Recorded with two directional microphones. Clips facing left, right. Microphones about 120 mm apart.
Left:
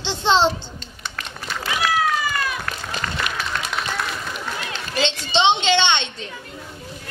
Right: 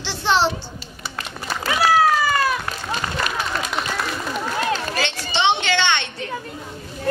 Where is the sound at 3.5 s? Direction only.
5° right (ahead or behind).